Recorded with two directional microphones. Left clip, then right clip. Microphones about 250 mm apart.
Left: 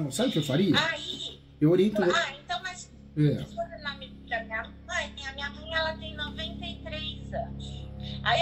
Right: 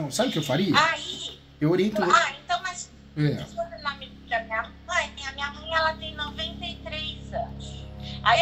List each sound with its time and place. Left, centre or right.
0.3 s speech: centre
0.7 s speech: centre
1.6 s speech: centre
2.0 s a sound: centre
3.2 s speech: centre
3.8 s a sound: centre
8.0 s music: centre